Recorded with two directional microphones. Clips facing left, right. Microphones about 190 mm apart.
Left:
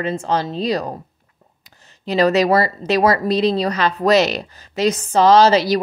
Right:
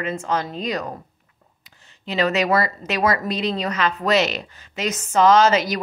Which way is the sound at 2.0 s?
40° left (ahead or behind).